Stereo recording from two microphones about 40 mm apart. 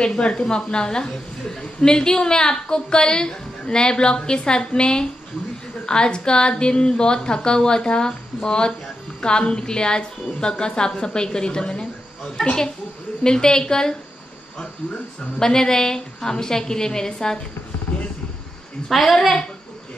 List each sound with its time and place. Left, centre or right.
0.0 s a woman's voice: left
13.2 s a woman's voice: centre
15.1 s a woman's voice: centre
18.9 s a woman's voice: centre